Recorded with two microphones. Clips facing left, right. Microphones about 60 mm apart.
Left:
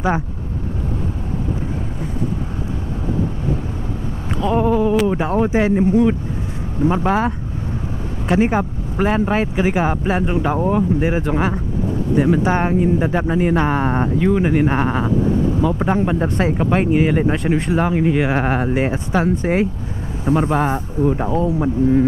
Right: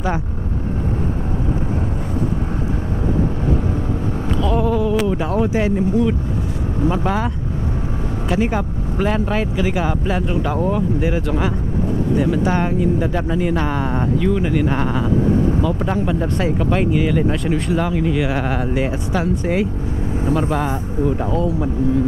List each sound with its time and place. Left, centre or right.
4.3 s speech: left